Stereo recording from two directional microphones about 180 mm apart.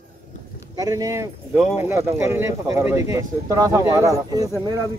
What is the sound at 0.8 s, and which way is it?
Speech, 20° right (ahead or behind).